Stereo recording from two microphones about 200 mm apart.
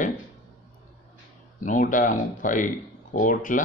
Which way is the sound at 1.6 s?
40° left (ahead or behind).